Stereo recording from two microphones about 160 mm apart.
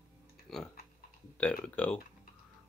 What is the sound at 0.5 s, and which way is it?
Typing, centre (ahead or behind).